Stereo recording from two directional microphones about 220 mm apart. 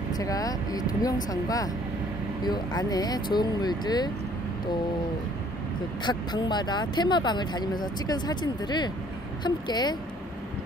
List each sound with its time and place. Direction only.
0.1 s speech: 15° left (ahead or behind)
6.0 s speech: 20° left (ahead or behind)